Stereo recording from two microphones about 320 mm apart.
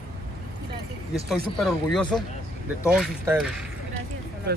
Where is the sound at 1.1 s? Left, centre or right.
Centre.